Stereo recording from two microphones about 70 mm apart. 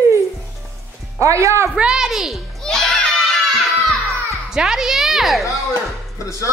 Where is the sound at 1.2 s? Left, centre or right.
Right.